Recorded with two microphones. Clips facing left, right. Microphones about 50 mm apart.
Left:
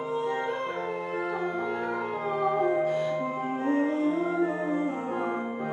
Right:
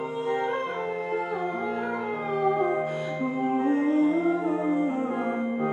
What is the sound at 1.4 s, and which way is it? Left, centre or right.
Music, centre.